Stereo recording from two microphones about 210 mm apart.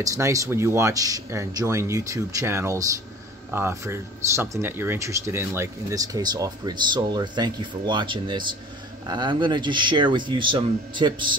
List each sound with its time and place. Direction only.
0.0 s speech: 15° right (ahead or behind)